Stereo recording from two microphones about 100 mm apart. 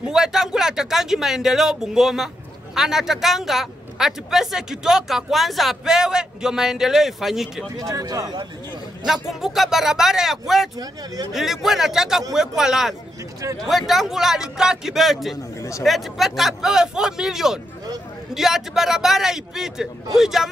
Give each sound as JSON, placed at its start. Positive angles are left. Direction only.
{"t": 0.0, "sound": "speech", "side_deg": -5}
{"t": 7.8, "sound": "speech", "side_deg": -35}
{"t": 9.3, "sound": "speech", "side_deg": -5}